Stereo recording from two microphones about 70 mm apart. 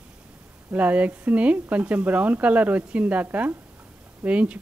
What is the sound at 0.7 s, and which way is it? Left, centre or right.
Speech, right.